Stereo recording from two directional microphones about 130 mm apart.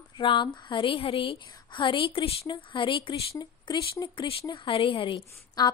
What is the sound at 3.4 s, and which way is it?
Speech, 30° left (ahead or behind).